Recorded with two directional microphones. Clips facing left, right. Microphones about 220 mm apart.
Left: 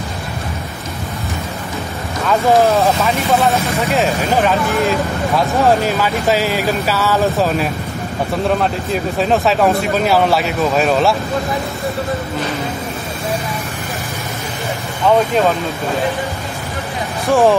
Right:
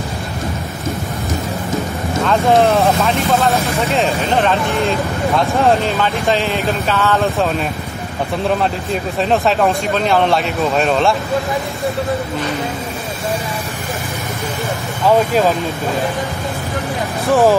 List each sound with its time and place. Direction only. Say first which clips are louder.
2.2 s speech: even; centre (ahead or behind)
9.2 s speech: even; centre (ahead or behind)
17.3 s speech: even; centre (ahead or behind)